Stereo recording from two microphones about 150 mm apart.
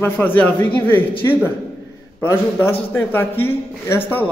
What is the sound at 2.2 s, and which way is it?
Speech, 15° left (ahead or behind).